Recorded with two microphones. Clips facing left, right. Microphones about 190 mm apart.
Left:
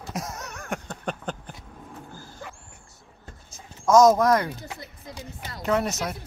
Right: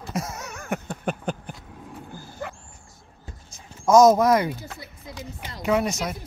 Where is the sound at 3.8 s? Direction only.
10° right (ahead or behind).